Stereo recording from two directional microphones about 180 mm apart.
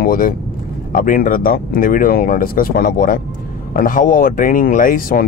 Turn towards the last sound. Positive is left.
turn(degrees=50)  # may be behind; listen again after turning